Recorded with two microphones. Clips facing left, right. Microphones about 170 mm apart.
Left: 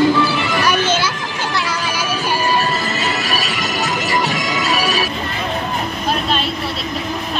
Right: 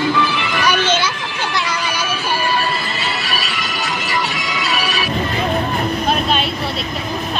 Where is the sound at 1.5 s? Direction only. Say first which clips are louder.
Even; 5° left (ahead or behind).